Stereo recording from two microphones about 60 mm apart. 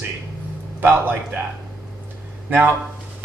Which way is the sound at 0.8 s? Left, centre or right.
Right.